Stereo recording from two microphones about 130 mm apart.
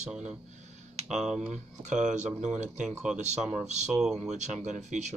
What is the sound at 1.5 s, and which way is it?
Speech, 65° right (ahead or behind).